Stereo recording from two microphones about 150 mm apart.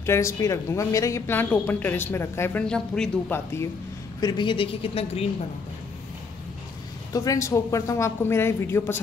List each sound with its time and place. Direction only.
0.0 s a woman's voice: 20° left (ahead or behind)
4.2 s speech: 30° left (ahead or behind)
7.1 s speech: 20° left (ahead or behind)